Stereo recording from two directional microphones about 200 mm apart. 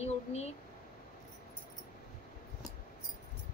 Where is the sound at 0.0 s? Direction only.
35° left (ahead or behind).